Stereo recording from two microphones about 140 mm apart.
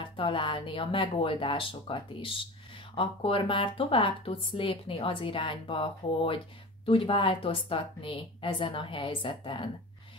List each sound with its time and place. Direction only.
0.0 s speech: 40° left (ahead or behind)